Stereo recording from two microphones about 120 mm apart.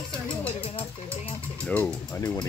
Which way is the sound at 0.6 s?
50° left (ahead or behind).